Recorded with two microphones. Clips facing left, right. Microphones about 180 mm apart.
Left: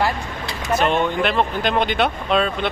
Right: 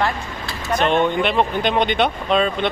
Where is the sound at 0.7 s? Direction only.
5° left (ahead or behind).